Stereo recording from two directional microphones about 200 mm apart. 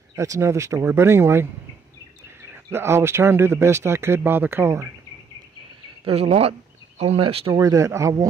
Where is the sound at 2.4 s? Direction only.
10° right (ahead or behind).